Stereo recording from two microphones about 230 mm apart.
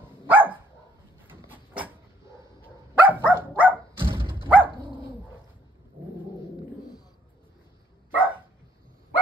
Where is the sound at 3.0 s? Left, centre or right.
Centre.